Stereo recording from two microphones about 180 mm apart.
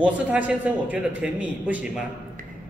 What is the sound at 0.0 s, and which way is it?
Speech, 10° right (ahead or behind).